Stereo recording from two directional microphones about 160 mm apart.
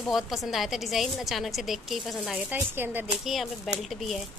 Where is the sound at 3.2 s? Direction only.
Centre (ahead or behind).